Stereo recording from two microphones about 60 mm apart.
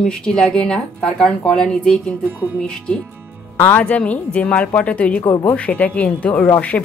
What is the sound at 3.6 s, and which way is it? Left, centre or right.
A woman's voice, left.